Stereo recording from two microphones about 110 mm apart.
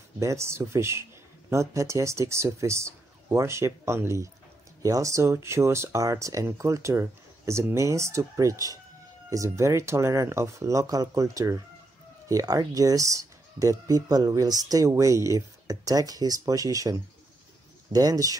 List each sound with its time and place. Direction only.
0.2 s speech: 25° right (ahead or behind)